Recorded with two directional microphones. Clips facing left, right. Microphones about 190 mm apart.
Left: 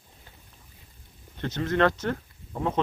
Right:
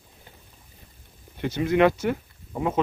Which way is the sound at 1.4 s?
10° right (ahead or behind).